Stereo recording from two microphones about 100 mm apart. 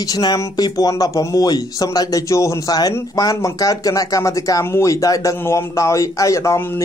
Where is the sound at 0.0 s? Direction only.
40° left (ahead or behind).